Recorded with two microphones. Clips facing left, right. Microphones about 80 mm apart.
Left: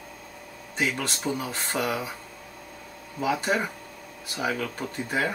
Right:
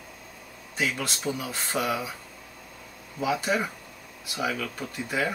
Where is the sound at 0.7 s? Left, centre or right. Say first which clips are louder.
Left 1 dB; left.